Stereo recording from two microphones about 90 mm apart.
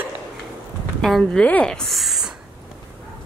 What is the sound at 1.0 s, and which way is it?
Speech, 5° left (ahead or behind).